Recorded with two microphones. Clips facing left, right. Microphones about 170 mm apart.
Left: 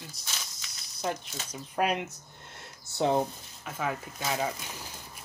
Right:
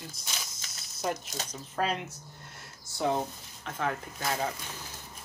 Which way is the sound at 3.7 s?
5° left (ahead or behind).